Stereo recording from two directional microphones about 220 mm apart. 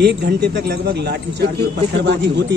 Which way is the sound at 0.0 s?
45° right (ahead or behind).